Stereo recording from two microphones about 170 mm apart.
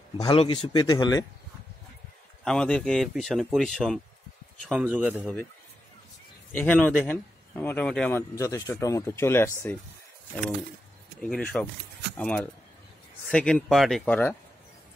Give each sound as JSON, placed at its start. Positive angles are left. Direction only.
{"t": 0.2, "sound": "speech", "side_deg": 30}
{"t": 2.4, "sound": "speech", "side_deg": 5}
{"t": 6.5, "sound": "speech", "side_deg": 10}
{"t": 11.1, "sound": "speech", "side_deg": 5}